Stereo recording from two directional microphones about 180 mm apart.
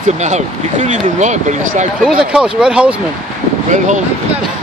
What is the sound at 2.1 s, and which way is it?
Speech, 5° right (ahead or behind).